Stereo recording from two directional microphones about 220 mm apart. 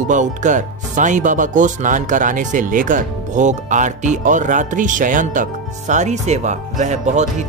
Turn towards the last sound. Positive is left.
turn(degrees=-30)  # may be behind; listen again after turning